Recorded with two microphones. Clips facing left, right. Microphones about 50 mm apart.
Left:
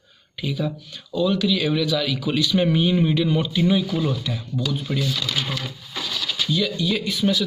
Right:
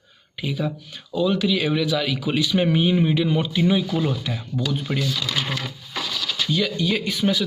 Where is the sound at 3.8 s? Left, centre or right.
Right.